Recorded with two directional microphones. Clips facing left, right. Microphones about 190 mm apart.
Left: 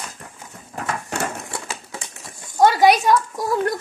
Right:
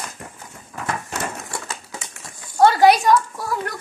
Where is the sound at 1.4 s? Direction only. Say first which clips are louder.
Even; 5° left (ahead or behind).